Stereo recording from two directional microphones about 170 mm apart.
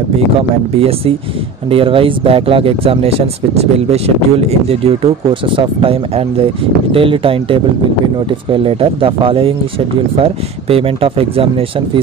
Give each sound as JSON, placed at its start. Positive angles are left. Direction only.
{"t": 0.7, "sound": "speech", "side_deg": -35}